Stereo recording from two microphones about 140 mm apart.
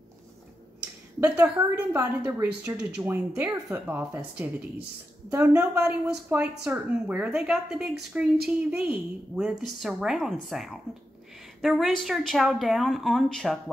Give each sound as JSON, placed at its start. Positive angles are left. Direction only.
{"t": 1.3, "sound": "a woman's voice", "side_deg": -15}
{"t": 5.6, "sound": "speech", "side_deg": -10}